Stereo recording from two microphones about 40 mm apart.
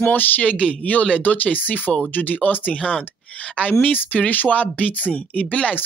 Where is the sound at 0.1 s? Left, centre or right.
Left.